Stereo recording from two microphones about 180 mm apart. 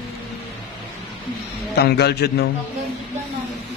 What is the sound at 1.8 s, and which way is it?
Speech, 65° left (ahead or behind).